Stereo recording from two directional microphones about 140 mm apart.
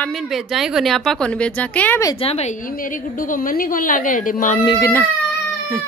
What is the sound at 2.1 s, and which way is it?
A woman's voice, 45° left (ahead or behind).